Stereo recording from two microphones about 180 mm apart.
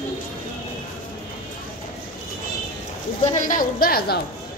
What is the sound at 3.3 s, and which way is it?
Speech, 50° left (ahead or behind).